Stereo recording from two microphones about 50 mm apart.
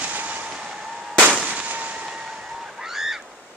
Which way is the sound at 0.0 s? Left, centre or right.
Right.